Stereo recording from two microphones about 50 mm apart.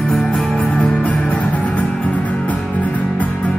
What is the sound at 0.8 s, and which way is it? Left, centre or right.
Music, centre.